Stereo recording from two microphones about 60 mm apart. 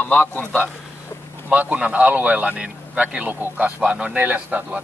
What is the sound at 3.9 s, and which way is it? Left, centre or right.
Speech, centre.